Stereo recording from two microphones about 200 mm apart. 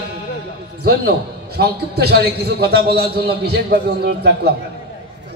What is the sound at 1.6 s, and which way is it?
A man's voice, 55° right (ahead or behind).